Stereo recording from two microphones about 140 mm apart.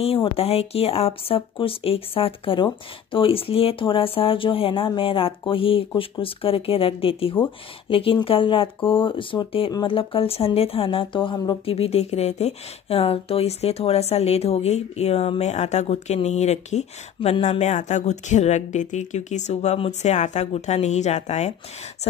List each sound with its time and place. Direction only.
0.0 s speech: 45° left (ahead or behind)
11.6 s speech: 45° left (ahead or behind)